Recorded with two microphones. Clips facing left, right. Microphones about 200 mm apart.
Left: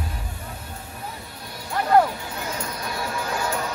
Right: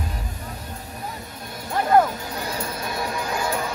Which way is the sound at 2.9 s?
20° right (ahead or behind).